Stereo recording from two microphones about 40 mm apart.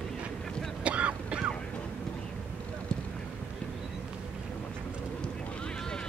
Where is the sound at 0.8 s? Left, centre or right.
Right.